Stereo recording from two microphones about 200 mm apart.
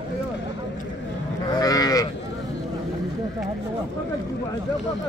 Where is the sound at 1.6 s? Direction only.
20° left (ahead or behind).